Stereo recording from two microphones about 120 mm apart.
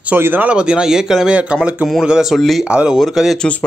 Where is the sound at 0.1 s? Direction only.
15° right (ahead or behind).